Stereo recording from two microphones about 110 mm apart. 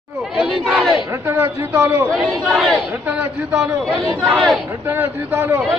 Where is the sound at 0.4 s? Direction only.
5° right (ahead or behind).